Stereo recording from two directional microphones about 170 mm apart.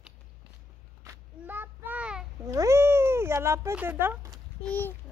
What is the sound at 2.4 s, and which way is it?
Cat, 20° right (ahead or behind).